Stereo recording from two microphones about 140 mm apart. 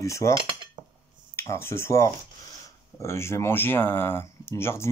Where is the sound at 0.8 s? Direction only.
30° right (ahead or behind).